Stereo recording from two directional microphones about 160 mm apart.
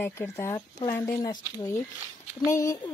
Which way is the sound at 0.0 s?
15° left (ahead or behind).